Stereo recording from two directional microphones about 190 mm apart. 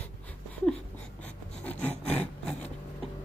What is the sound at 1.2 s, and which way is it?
Writing, 10° left (ahead or behind).